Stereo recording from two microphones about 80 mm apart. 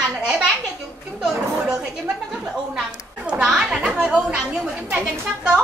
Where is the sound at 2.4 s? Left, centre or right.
Centre.